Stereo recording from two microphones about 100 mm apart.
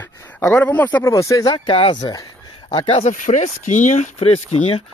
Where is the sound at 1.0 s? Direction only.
30° left (ahead or behind).